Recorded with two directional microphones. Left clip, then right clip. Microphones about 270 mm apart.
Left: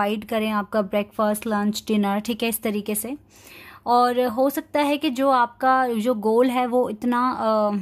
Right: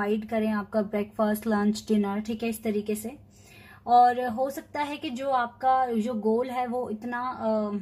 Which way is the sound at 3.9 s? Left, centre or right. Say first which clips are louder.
Left 1 dB; left.